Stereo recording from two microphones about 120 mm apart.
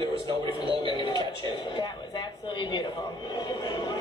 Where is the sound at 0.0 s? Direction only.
45° right (ahead or behind).